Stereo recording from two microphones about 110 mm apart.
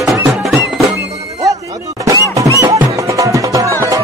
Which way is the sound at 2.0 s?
30° right (ahead or behind).